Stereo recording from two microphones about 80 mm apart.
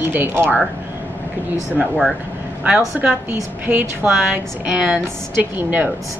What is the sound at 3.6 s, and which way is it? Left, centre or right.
Speech, right.